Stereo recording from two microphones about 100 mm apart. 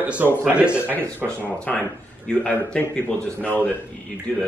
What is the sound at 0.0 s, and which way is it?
Speech, 15° right (ahead or behind).